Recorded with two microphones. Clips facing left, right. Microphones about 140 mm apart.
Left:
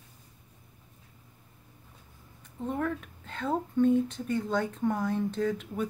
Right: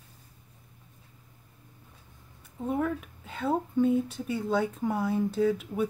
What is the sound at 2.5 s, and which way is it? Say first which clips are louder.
Speech: right 2 dB; 10° right (ahead or behind).